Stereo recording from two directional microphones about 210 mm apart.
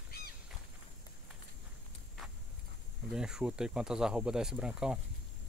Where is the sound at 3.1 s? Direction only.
5° right (ahead or behind).